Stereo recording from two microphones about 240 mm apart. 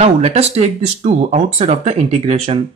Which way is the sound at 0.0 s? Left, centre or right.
Right.